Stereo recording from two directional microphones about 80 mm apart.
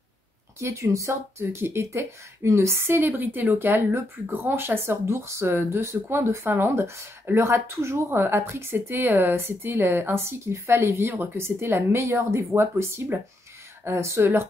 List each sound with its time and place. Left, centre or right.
0.6 s speech: right